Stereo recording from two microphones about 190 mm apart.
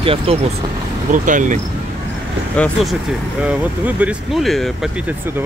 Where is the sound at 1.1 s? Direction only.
40° right (ahead or behind).